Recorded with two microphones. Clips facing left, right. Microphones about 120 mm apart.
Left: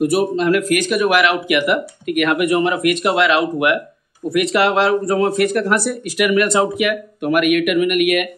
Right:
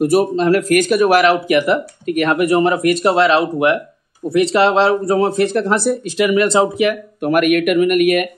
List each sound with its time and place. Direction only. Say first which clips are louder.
0.0 s speech: right 2 dB; 40° right (ahead or behind)